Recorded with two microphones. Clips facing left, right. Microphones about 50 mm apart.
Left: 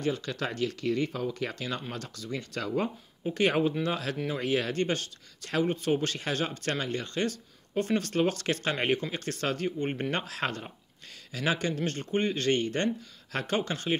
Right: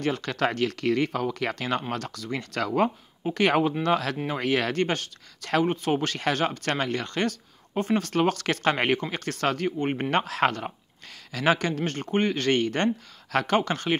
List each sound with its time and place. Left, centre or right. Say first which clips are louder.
0.0 s speech: right 5 dB; right
1.5 s speech: right 7 dB; right
4.4 s speech: right 4 dB; right
4.8 s speech: right 2 dB; right
5.7 s speech: right 2 dB; right
7.7 s speech: right 3 dB; right
8.1 s speech: right 3 dB; right
10.1 s speech: right 8 dB; right
13.3 s speech: right 7 dB; right
13.6 s speech: right 5 dB; right